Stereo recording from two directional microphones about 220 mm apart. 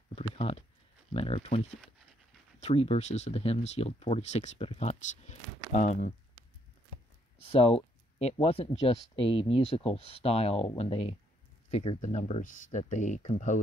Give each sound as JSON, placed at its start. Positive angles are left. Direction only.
{"t": 0.1, "sound": "a sound", "side_deg": 25}
{"t": 1.1, "sound": "speech", "side_deg": 25}
{"t": 7.4, "sound": "speech", "side_deg": 25}